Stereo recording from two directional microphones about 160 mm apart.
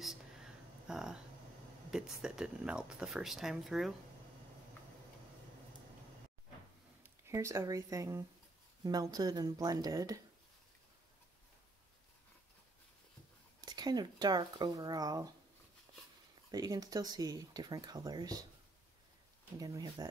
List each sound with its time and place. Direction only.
0.0 s a sound: 5° right (ahead or behind)
1.9 s speech: 5° right (ahead or behind)
7.0 s speech: 15° right (ahead or behind)
13.6 s speech: 25° right (ahead or behind)
16.5 s speech: 25° right (ahead or behind)
19.6 s speech: 25° right (ahead or behind)